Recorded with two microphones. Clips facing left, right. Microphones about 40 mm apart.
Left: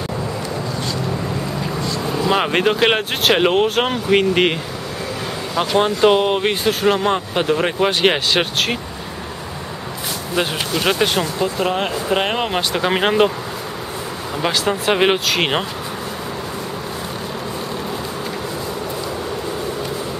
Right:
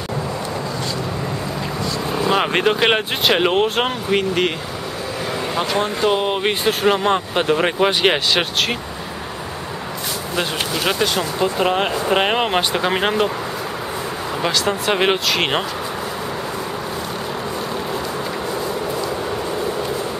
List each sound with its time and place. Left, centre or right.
2.2 s speech: centre
4.1 s speech: centre
6.2 s speech: centre
6.6 s speech: centre
10.3 s speech: centre
11.3 s speech: centre
12.7 s speech: centre
14.4 s speech: centre